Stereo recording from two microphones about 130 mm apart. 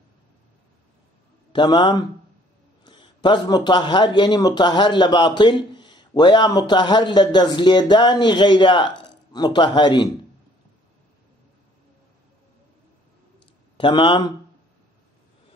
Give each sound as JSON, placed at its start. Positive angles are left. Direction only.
{"t": 1.5, "sound": "a man's voice", "side_deg": 35}
{"t": 13.7, "sound": "a man's voice", "side_deg": 40}